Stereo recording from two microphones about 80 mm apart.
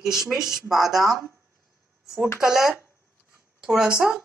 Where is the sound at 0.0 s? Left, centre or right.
Centre.